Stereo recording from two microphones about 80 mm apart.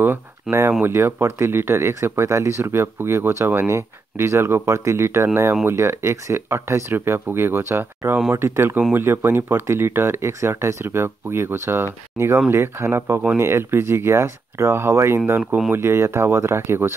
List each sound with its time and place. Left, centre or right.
0.0 s speech: right